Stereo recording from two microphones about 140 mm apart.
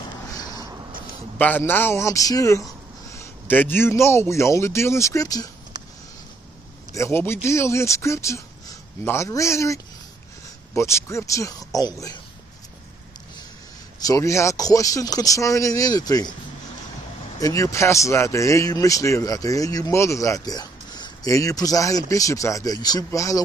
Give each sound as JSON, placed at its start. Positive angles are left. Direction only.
{"t": 0.3, "sound": "vehicle", "side_deg": 25}
{"t": 1.4, "sound": "speech", "side_deg": 15}
{"t": 6.9, "sound": "speech", "side_deg": 20}
{"t": 14.0, "sound": "speech", "side_deg": 20}
{"t": 17.4, "sound": "speech", "side_deg": 25}